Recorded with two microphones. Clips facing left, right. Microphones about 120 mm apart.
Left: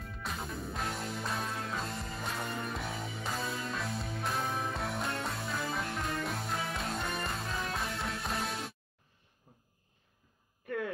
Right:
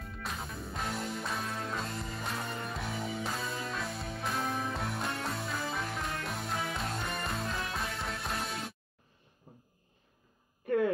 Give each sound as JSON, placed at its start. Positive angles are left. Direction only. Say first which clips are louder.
{"t": 0.0, "sound": "music", "louder": "even", "side_deg": 0}